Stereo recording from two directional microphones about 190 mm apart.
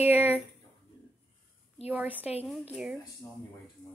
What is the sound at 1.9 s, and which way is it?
A woman's voice, 10° right (ahead or behind).